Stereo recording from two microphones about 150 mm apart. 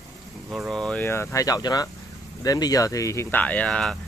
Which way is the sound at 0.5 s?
Centre (ahead or behind).